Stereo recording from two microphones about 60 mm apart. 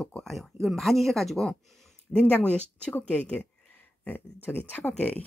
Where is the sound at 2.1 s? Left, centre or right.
Left.